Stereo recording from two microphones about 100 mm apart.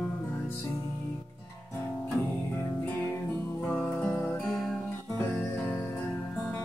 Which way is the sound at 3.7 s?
15° left (ahead or behind).